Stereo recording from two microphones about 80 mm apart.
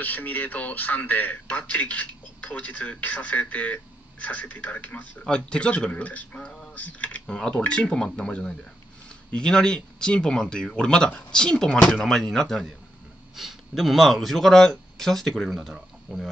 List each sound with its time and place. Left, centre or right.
0.0 s speech: left; by 16.3 s centre